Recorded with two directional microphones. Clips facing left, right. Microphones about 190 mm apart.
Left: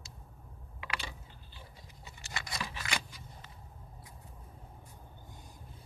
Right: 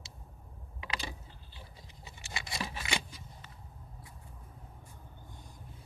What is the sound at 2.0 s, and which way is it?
Scissors, 25° right (ahead or behind).